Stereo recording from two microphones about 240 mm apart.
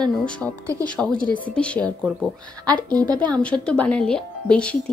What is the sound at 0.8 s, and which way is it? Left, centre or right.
Speech, centre.